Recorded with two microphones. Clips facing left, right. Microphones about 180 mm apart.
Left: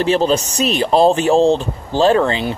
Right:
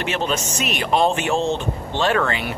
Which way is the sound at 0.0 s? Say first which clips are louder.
Left 8 dB; 35° left (ahead or behind).